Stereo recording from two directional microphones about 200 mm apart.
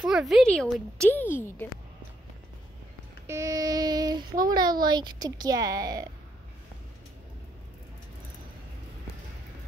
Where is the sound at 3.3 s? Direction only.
15° right (ahead or behind).